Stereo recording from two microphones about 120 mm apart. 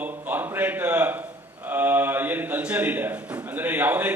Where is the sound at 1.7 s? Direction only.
15° right (ahead or behind).